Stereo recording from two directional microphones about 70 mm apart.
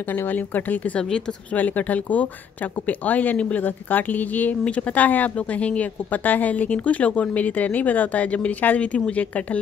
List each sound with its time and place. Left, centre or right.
0.3 s speech: left